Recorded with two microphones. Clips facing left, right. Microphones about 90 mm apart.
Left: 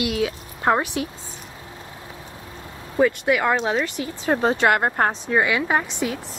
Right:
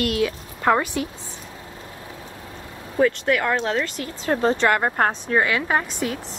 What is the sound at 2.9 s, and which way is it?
Speech, 10° left (ahead or behind).